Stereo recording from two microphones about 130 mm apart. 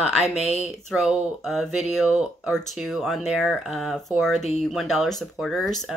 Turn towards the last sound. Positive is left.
turn(degrees=0)  # may be behind; listen again after turning